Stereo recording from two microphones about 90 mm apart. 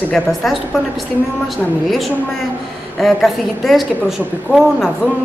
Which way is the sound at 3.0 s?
Centre (ahead or behind).